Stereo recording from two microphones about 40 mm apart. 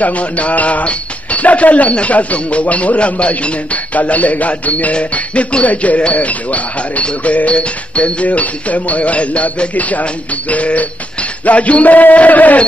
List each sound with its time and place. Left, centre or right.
0.0 s speech: left